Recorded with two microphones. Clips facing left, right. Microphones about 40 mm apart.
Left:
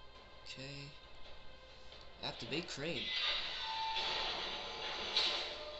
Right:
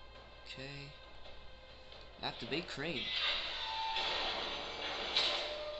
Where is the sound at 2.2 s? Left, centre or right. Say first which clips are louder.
Right 2 dB; right.